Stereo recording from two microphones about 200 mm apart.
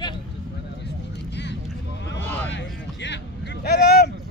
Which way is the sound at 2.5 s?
60° left (ahead or behind).